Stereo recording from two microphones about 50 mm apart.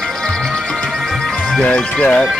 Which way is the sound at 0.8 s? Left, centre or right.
Centre.